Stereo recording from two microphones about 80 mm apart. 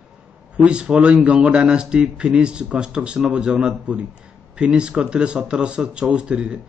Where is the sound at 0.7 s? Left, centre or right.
Centre.